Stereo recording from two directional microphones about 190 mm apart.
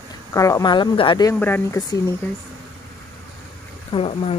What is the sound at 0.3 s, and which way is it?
Speech, 15° left (ahead or behind).